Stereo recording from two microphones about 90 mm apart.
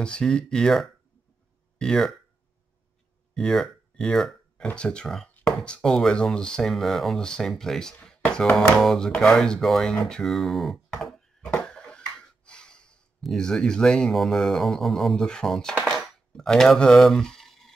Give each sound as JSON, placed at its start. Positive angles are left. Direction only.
{"t": 0.0, "sound": "speech", "side_deg": 10}
{"t": 3.3, "sound": "speech", "side_deg": 5}
{"t": 11.0, "sound": "a sound", "side_deg": 5}